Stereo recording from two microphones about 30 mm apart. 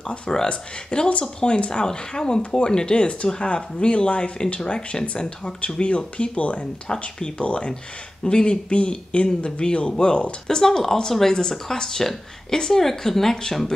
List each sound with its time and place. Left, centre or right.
0.3 s speech: left
0.9 s speech: left
5.8 s speech: left
8.2 s speech: left
10.6 s speech: centre